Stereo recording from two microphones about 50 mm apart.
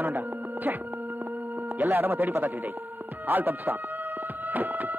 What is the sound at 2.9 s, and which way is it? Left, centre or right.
Music, right.